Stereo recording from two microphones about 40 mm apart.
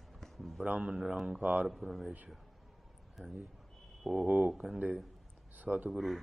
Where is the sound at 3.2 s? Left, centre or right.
Right.